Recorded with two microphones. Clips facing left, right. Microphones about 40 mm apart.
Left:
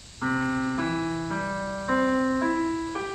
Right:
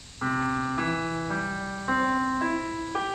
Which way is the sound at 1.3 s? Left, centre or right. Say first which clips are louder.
Left 1 dB; centre.